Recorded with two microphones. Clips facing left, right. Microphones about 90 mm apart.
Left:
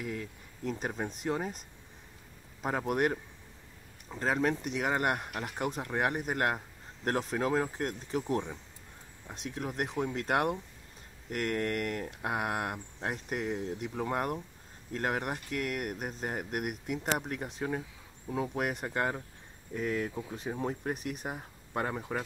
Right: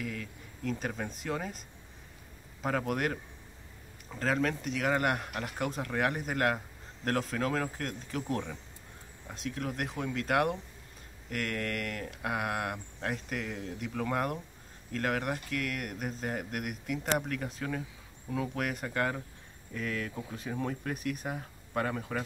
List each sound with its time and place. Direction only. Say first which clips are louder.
0.0 s speech: left 1 dB; 20° left (ahead or behind)
2.6 s speech: left 1 dB; 15° left (ahead or behind)